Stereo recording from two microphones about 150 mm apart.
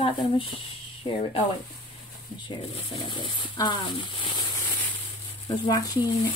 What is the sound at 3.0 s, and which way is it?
Speech, 30° left (ahead or behind).